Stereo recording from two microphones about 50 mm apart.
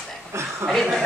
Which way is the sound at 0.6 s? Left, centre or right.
Centre.